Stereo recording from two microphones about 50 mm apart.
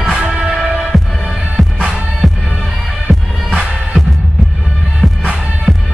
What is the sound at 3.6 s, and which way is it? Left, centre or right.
Music, centre.